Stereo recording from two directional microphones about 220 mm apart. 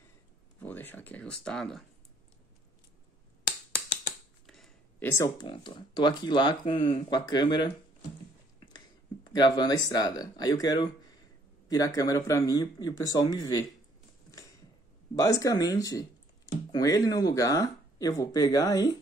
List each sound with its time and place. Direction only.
0.6 s speech: 10° left (ahead or behind)
4.5 s a sound: centre (ahead or behind)
5.1 s speech: 15° left (ahead or behind)
8.7 s speech: 20° left (ahead or behind)
15.1 s speech: 15° left (ahead or behind)